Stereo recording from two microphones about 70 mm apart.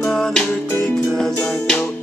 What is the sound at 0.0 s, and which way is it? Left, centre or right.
Music, centre.